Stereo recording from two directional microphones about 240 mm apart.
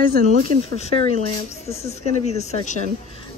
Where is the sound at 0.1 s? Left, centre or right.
Right.